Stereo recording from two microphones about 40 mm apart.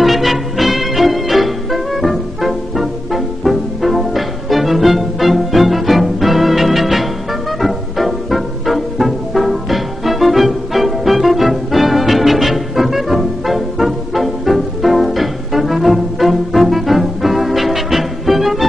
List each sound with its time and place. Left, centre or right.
0.0 s music: centre